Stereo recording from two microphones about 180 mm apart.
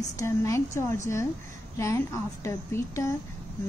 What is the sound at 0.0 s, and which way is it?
Speech, 15° left (ahead or behind).